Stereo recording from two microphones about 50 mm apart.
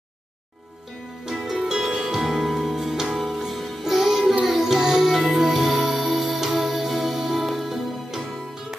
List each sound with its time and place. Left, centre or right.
1.2 s music: centre